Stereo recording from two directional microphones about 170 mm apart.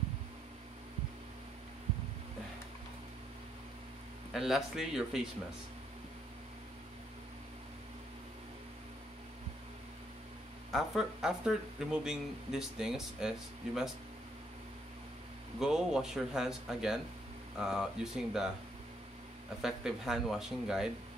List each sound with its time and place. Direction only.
4.3 s speech: centre (ahead or behind)
10.7 s speech: centre (ahead or behind)
15.6 s speech: 5° right (ahead or behind)
19.6 s speech: centre (ahead or behind)